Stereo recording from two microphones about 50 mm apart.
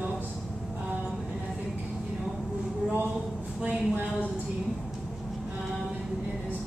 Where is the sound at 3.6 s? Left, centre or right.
Right.